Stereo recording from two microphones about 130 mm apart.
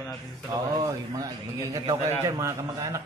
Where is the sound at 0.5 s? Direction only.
30° right (ahead or behind).